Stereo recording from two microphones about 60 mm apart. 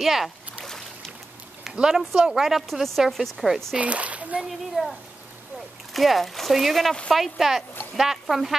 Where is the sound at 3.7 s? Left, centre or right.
Right.